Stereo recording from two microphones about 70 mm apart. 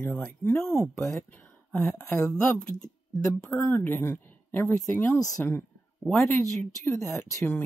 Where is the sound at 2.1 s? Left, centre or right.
Centre.